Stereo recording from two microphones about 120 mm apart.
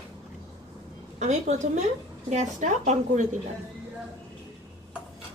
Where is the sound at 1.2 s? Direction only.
80° right.